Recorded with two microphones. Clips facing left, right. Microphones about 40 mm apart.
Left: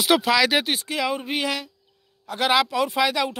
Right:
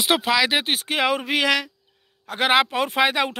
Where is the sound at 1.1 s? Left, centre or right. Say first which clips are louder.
Right 5 dB; right.